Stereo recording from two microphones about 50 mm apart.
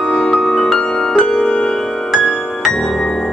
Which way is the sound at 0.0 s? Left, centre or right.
Left.